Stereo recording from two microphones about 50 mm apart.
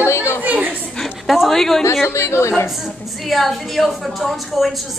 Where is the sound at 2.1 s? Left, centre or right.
Left.